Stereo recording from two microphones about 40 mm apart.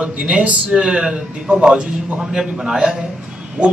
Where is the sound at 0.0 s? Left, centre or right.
Right.